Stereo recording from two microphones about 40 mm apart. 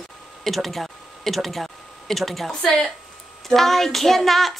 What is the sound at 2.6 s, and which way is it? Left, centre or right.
Speech, centre.